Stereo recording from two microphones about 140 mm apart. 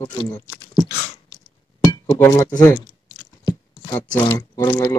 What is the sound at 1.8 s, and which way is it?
Chink, 25° left (ahead or behind).